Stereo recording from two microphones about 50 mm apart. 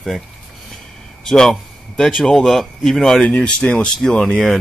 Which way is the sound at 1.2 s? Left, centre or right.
Centre.